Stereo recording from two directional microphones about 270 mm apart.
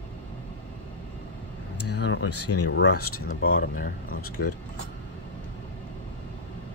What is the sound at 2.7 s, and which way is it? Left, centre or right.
Speech, left.